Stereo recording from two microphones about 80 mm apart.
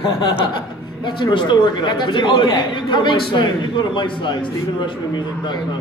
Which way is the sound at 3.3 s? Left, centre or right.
Left.